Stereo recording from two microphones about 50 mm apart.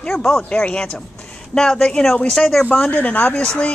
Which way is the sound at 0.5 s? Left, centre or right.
Centre.